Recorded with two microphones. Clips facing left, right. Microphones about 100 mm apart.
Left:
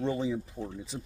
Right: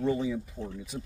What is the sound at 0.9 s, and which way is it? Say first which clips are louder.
Speech: right 3 dB; 10° left (ahead or behind).